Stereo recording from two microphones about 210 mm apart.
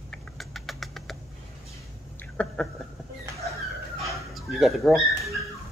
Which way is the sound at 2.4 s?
5° left (ahead or behind).